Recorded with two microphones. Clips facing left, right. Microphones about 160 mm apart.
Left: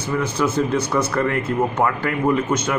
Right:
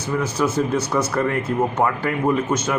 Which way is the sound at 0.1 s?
10° right (ahead or behind).